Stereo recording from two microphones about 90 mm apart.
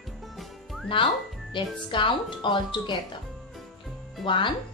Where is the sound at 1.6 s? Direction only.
60° left (ahead or behind).